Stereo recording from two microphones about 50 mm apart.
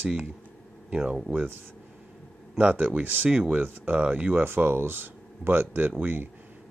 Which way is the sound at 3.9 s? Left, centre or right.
Right.